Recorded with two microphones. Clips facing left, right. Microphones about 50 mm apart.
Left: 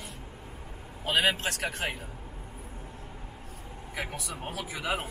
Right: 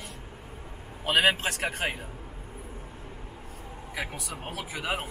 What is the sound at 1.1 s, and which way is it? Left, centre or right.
Speech, centre.